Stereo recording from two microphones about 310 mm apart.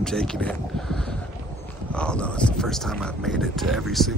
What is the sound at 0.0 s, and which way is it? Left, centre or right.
Speech, centre.